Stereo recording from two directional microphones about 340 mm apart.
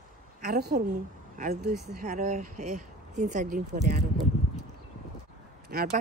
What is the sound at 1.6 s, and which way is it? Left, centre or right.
Speech, centre.